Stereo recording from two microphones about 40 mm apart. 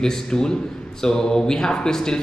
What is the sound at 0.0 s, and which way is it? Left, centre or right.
Speech, centre.